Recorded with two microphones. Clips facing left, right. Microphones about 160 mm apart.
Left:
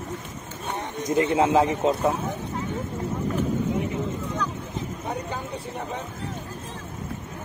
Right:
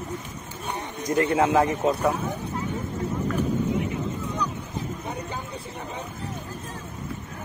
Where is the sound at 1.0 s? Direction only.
20° left (ahead or behind).